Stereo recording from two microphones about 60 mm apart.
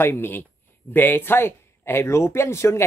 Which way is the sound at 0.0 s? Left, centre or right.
Left.